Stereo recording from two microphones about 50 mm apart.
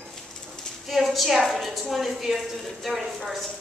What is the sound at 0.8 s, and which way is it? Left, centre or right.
A woman's voice, centre.